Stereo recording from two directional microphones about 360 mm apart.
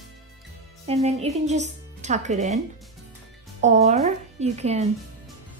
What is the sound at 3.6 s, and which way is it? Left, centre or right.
Speech, centre.